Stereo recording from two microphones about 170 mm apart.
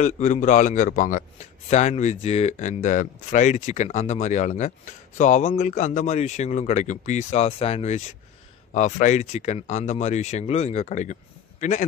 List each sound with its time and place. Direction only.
0.0 s a man's voice: 45° left (ahead or behind)